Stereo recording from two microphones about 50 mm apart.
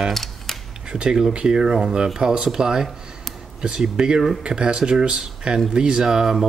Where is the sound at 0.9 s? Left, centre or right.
Centre.